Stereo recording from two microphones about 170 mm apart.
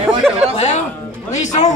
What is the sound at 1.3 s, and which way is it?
Speech, 45° left (ahead or behind).